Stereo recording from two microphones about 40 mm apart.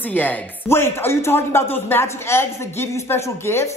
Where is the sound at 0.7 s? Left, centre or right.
Left.